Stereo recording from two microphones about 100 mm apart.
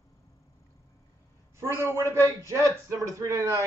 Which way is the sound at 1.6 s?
30° right (ahead or behind).